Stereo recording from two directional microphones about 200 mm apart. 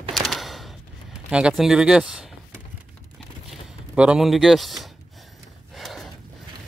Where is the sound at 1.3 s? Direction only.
5° right (ahead or behind).